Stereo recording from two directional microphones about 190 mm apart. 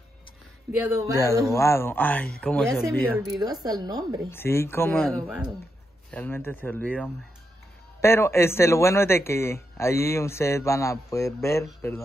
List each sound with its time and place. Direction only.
0.7 s speech: 15° right (ahead or behind)
1.5 s a man's voice: 15° left (ahead or behind)
3.3 s speech: 20° right (ahead or behind)
4.3 s a man's voice: 10° left (ahead or behind)
5.1 s speech: 5° right (ahead or behind)
6.1 s a man's voice: 10° left (ahead or behind)